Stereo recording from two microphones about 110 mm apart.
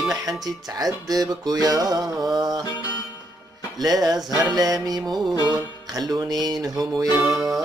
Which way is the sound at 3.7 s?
35° right (ahead or behind).